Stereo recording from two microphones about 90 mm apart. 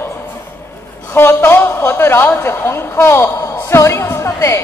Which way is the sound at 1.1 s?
25° left (ahead or behind).